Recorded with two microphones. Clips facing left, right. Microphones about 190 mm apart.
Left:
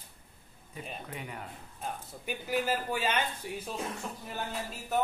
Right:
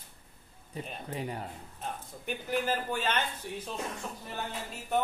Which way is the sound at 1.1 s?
30° right (ahead or behind).